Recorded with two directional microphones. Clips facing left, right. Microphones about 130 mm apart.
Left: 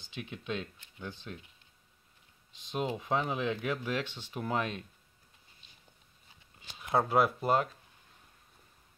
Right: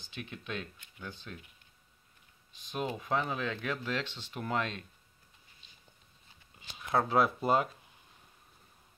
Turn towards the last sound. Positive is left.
turn(degrees=0)  # may be behind; listen again after turning